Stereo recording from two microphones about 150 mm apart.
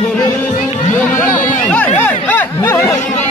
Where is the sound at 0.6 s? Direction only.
55° left (ahead or behind).